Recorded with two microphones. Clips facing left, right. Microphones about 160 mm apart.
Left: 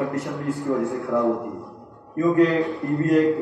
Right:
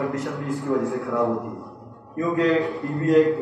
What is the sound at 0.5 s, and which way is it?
Speech, 20° left (ahead or behind).